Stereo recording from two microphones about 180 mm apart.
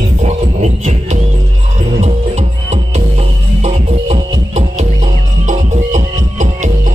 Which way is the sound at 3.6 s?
35° right (ahead or behind).